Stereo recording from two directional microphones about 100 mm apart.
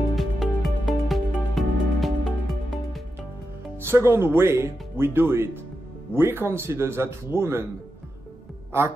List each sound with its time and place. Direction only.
0.1 s music: centre (ahead or behind)
3.8 s speech: 25° right (ahead or behind)